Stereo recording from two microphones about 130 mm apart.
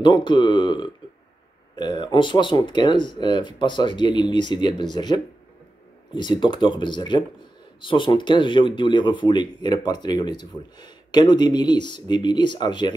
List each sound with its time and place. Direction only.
0.0 s speech: 35° left (ahead or behind)